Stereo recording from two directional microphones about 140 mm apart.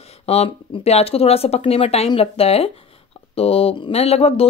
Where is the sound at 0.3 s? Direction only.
50° left (ahead or behind).